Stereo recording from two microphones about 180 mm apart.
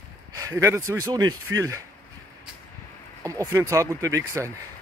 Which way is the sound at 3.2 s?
20° right (ahead or behind).